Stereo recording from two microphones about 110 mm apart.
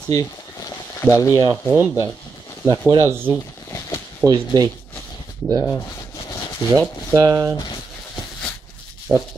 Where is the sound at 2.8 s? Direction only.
25° right (ahead or behind).